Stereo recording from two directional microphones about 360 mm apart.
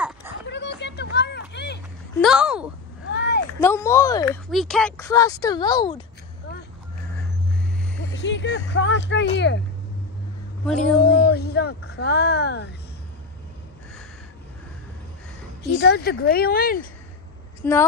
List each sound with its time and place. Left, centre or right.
0.5 s a sound: left
2.1 s speech: centre
3.1 s a sound: left
3.6 s speech: centre
8.2 s speech: left
10.8 s speech: left
15.7 s speech: left
17.6 s female singing: centre